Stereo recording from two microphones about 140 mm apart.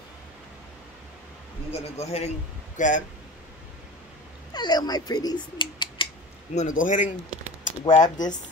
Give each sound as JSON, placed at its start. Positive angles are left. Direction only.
{"t": 1.7, "sound": "a man's voice", "side_deg": 50}
{"t": 2.8, "sound": "a man's voice", "side_deg": 65}
{"t": 4.6, "sound": "speech", "side_deg": 30}
{"t": 6.5, "sound": "a man's voice", "side_deg": 60}
{"t": 7.8, "sound": "speech", "side_deg": 30}